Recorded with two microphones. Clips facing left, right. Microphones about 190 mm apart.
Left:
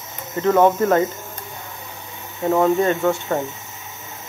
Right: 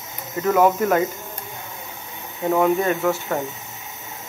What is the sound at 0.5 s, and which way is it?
Speech, 25° left (ahead or behind).